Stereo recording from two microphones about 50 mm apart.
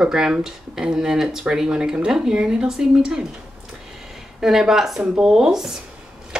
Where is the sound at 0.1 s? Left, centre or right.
Centre.